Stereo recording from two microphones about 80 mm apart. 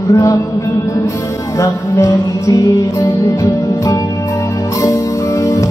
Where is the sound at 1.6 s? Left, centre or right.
Left.